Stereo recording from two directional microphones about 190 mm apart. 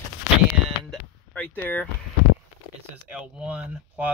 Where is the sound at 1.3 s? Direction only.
10° left (ahead or behind).